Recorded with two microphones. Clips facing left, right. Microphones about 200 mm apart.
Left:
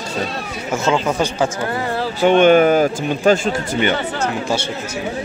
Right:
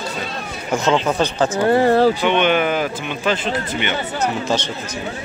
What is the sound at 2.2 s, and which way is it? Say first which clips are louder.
Speech: left 6 dB; 45° left (ahead or behind).